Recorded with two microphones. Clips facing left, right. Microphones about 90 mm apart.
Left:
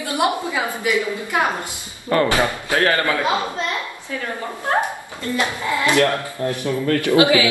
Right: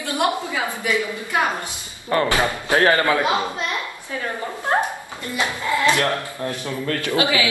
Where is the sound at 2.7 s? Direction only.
20° right (ahead or behind).